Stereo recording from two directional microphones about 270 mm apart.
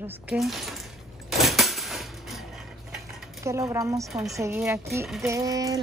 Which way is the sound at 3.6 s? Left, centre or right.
Centre.